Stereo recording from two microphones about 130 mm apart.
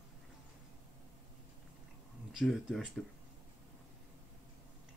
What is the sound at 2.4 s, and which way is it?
Speech, 5° right (ahead or behind).